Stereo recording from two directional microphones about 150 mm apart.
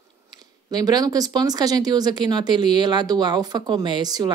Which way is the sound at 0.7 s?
25° right (ahead or behind).